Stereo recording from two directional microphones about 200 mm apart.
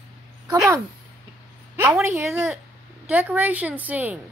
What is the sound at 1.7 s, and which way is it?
A woman's voice, 10° right (ahead or behind).